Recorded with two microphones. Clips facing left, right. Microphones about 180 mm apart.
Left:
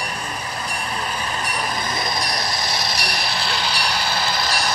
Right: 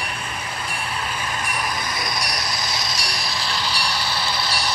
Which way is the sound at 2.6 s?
60° left (ahead or behind).